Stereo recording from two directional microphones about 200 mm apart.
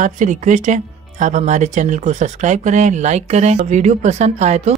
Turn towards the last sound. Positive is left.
turn(degrees=-35)  # may be behind; listen again after turning